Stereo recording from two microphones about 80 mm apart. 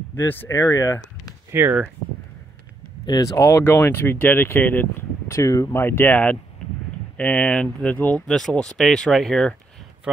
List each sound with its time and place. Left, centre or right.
0.1 s speech: left
0.5 s speech: left
1.6 s speech: right
3.1 s speech: left
3.6 s speech: left
5.3 s speech: left
5.8 s speech: left
8.3 s speech: centre
10.1 s speech: centre